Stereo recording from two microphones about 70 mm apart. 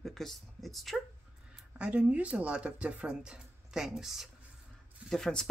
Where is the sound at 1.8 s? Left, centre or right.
Centre.